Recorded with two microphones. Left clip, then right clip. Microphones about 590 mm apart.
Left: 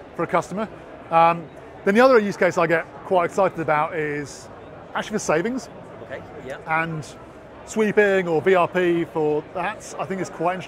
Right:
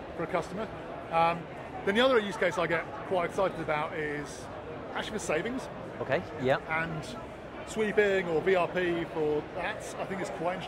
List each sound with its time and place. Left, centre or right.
0.2 s speech: left
6.0 s speech: right
6.7 s speech: left